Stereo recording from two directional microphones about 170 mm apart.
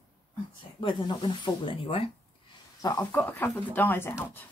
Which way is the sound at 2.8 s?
20° left (ahead or behind).